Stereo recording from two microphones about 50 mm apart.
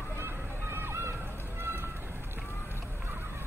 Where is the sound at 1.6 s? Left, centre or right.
Right.